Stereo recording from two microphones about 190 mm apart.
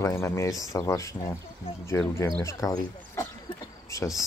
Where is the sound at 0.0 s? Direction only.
15° left (ahead or behind).